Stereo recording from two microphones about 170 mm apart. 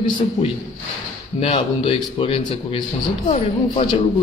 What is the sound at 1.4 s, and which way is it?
A man's voice, 30° left (ahead or behind).